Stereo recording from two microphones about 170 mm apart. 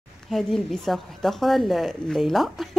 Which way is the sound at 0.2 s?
Centre (ahead or behind).